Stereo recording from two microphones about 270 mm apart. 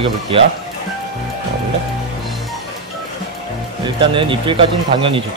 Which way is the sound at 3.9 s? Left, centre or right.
Centre.